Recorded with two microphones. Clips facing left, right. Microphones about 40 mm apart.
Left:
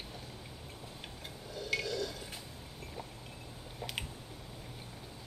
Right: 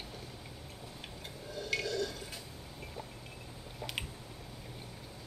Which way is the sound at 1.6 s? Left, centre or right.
Centre.